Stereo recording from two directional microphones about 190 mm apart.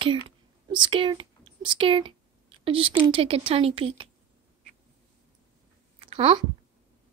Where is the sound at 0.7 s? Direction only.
25° right (ahead or behind).